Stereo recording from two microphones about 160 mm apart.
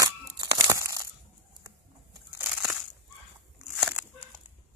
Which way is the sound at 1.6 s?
20° right (ahead or behind).